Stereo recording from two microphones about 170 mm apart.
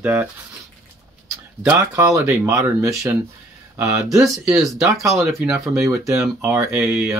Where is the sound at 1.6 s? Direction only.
15° right (ahead or behind).